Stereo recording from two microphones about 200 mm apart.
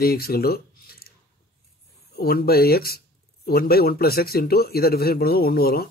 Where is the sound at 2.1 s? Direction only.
50° left (ahead or behind).